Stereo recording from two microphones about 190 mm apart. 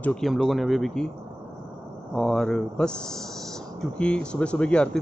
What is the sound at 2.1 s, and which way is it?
Speech, centre (ahead or behind).